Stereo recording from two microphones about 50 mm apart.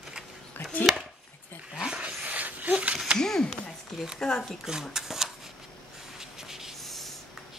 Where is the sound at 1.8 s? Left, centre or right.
Centre.